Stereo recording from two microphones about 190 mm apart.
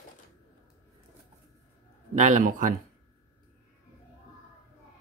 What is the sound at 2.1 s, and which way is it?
Speech, 40° right (ahead or behind).